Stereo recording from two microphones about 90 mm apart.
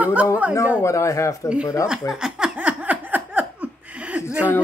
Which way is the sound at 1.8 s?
5° right (ahead or behind).